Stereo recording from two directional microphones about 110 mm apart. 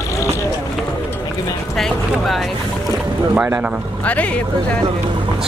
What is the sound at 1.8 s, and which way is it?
Boat, centre (ahead or behind).